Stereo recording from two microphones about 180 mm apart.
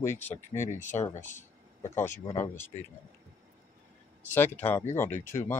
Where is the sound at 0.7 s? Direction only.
40° left (ahead or behind).